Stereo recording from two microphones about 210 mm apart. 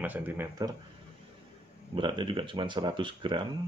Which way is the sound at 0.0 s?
5° right (ahead or behind).